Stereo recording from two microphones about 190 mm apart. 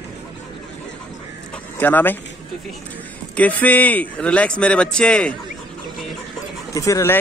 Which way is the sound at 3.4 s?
10° left (ahead or behind).